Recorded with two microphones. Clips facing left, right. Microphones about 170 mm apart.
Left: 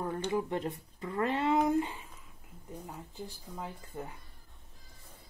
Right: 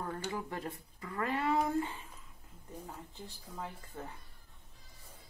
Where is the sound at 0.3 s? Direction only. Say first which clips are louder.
Left 7 dB; 20° left (ahead or behind).